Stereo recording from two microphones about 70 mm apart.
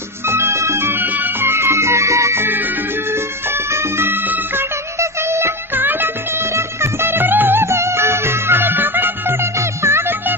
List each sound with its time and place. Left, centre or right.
0.3 s music: right
3.7 s music: right
5.3 s music of bollywood: right
6.5 s music: right